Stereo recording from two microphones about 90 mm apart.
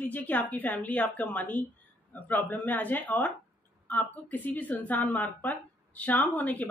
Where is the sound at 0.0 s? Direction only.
20° left (ahead or behind).